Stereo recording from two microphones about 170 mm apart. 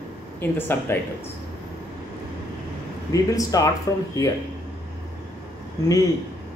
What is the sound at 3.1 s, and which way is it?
Speech, 20° left (ahead or behind).